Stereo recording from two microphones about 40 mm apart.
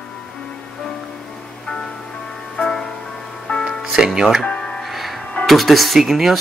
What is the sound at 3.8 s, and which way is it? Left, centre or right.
Music, centre.